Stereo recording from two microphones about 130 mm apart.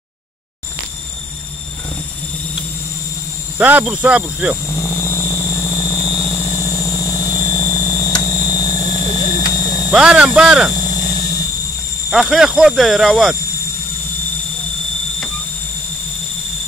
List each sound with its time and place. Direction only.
3.5 s speech: 15° right (ahead or behind)
4.6 s vehicle: 20° left (ahead or behind)
8.2 s a sound: 25° left (ahead or behind)
9.8 s speech: 5° right (ahead or behind)
10.7 s a sound: 30° left (ahead or behind)
12.1 s speech: centre (ahead or behind)